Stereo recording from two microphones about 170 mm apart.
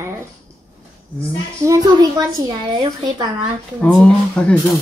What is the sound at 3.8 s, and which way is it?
Speech, 5° left (ahead or behind).